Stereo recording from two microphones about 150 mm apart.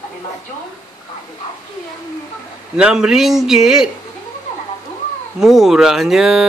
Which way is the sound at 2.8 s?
5° right (ahead or behind).